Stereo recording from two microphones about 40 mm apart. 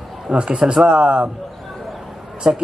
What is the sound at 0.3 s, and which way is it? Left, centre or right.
A man's voice, right.